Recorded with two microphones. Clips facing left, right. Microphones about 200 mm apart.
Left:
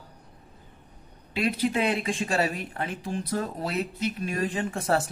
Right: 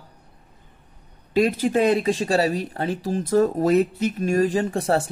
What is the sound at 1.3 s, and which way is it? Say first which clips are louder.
Speech: right 7 dB; 40° right (ahead or behind).